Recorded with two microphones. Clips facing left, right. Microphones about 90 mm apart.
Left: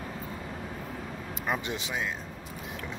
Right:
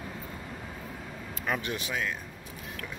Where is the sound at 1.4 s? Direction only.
20° left (ahead or behind).